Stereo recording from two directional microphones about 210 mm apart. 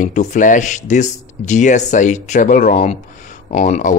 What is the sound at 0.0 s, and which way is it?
Speech, 35° left (ahead or behind).